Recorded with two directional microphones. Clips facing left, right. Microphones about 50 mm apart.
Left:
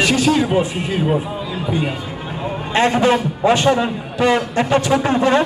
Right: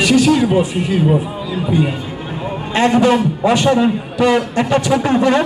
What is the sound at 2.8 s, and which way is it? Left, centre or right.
Speech, left.